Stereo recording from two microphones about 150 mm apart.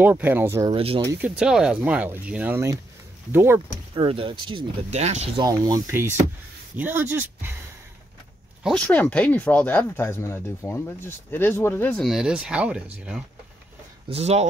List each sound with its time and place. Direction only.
0.0 s speech: 10° right (ahead or behind)
0.7 s speech: 40° right (ahead or behind)
1.1 s speech: 10° right (ahead or behind)
3.9 s speech: 35° right (ahead or behind)
4.9 s speech: 45° right (ahead or behind)
5.4 s speech: 25° right (ahead or behind)
8.8 s speech: 10° left (ahead or behind); by 12.8 s 5° right (ahead or behind)
14.0 s speech: 45° right (ahead or behind)